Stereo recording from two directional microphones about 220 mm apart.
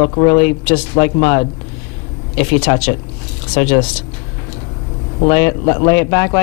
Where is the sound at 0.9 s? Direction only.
15° left (ahead or behind).